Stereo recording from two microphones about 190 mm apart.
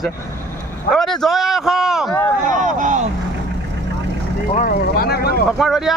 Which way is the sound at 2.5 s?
45° right (ahead or behind).